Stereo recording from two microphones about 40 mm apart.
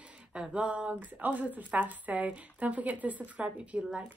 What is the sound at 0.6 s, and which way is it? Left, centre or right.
A woman's voice, right.